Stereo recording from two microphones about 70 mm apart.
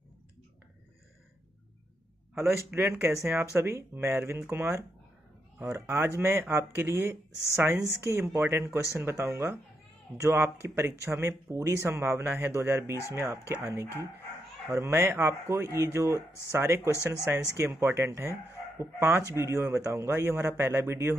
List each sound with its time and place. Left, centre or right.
2.3 s speech: right
14.7 s speech: right